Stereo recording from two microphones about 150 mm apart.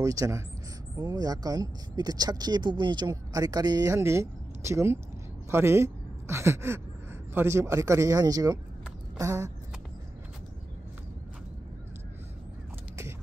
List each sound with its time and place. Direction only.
0.0 s speech: 25° right (ahead or behind)